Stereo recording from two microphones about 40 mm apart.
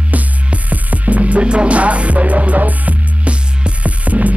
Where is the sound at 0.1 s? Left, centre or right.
Right.